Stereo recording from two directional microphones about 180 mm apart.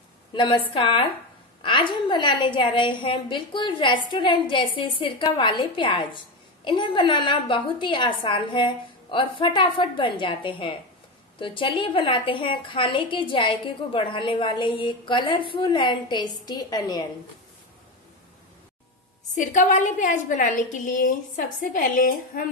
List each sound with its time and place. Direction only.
0.3 s a woman's voice: 25° left (ahead or behind)
19.3 s a woman's voice: 45° left (ahead or behind)